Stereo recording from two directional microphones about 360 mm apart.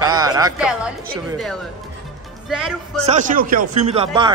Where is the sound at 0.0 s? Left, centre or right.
Centre.